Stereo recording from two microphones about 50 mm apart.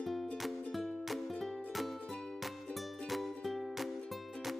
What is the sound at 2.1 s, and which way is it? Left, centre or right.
Music, centre.